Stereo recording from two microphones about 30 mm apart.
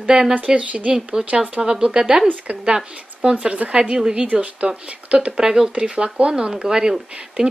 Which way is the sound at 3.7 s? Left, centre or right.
Right.